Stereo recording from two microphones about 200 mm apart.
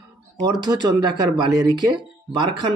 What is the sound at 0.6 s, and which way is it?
Speech, 20° right (ahead or behind).